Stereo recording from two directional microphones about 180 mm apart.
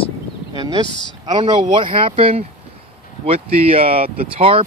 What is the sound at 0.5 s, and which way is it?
Speech, 20° right (ahead or behind).